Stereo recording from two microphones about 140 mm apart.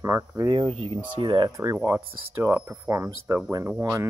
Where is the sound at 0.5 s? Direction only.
45° right (ahead or behind).